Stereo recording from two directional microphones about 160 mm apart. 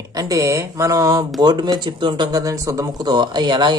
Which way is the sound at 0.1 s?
20° right (ahead or behind).